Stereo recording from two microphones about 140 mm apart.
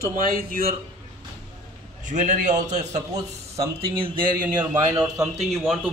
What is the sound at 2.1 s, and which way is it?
Speech, 65° right (ahead or behind).